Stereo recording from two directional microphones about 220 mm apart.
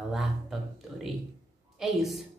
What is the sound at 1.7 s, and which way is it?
Speech, centre (ahead or behind).